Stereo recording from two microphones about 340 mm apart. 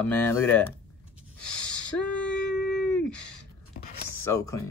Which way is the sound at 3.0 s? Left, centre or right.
Centre.